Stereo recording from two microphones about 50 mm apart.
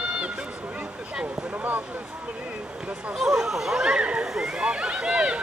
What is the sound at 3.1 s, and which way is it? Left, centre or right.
Speech, centre.